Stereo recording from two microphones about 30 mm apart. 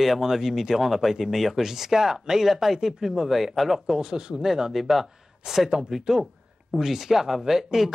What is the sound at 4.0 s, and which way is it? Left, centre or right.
Speech, right.